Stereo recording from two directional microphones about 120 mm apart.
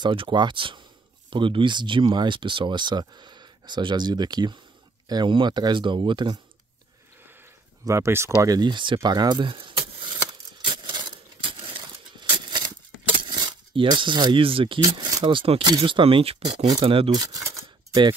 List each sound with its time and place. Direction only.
0.0 s speech: 45° right (ahead or behind)
7.8 s speech: 25° right (ahead or behind); by 10.1 s 45° right (ahead or behind)
10.6 s a sound: 40° right (ahead or behind)
14.8 s speech: 30° right (ahead or behind)
15.3 s speech: 50° right (ahead or behind)
16.8 s speech: 50° right (ahead or behind)
17.1 s a sound: 30° right (ahead or behind)